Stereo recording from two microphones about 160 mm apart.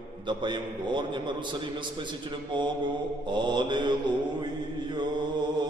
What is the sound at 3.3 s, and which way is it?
Speech, 30° right (ahead or behind).